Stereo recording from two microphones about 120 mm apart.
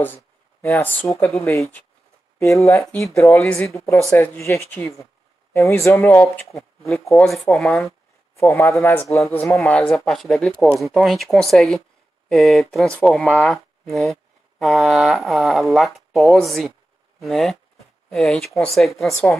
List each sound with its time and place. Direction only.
0.0 s speech: 15° left (ahead or behind)
3.2 s speech: 15° left (ahead or behind)
6.8 s speech: centre (ahead or behind)
8.4 s speech: 25° left (ahead or behind)
9.7 s speech: 5° left (ahead or behind)
13.8 s speech: centre (ahead or behind)